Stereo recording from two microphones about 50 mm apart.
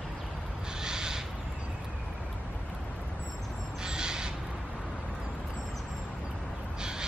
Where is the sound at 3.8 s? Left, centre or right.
Centre.